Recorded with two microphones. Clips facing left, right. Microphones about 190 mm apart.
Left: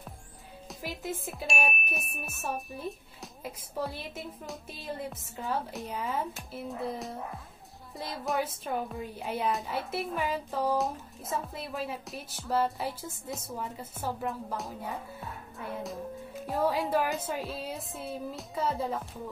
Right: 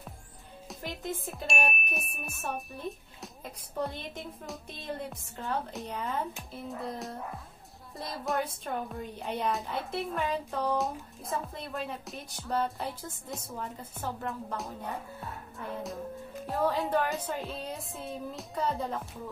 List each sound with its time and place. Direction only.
0.7 s a woman's voice: 5° left (ahead or behind)
15.8 s music: centre (ahead or behind)
16.8 s a woman's voice: 5° left (ahead or behind)